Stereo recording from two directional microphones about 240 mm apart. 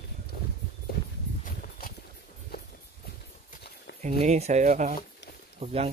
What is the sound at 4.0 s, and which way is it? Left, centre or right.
Speech, right.